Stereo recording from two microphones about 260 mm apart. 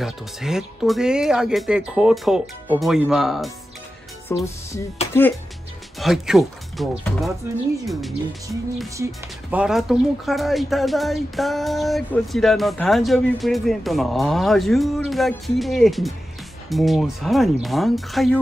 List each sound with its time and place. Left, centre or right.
0.0 s speech: centre
4.3 s speech: centre
5.0 s music: left
5.9 s speech: centre